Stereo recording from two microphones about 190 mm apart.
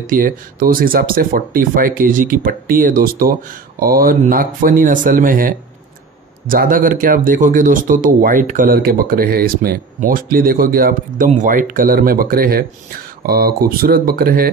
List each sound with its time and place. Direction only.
0.1 s a man's voice: 50° right (ahead or behind)